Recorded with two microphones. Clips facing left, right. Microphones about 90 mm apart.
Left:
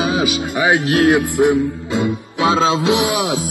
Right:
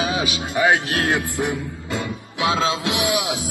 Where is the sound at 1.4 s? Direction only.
20° left (ahead or behind).